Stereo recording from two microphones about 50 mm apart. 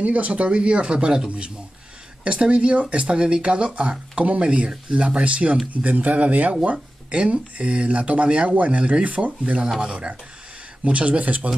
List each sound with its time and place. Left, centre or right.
0.0 s speech: right
10.8 s speech: right